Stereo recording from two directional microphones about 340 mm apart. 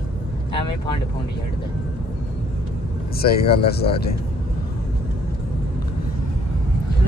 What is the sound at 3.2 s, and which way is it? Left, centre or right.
Speech, left.